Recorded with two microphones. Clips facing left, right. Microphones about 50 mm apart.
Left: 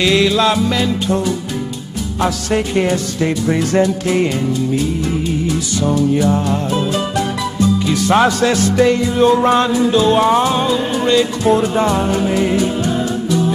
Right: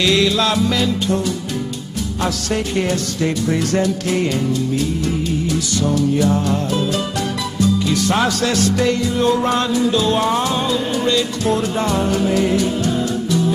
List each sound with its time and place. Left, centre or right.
0.0 s music: centre
2.2 s music: centre
5.9 s music: centre